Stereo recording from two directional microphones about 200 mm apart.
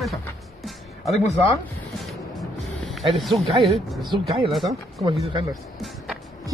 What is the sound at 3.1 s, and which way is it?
Speech, centre (ahead or behind).